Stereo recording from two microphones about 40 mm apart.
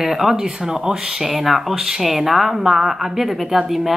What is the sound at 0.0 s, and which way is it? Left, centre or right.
Speech, centre.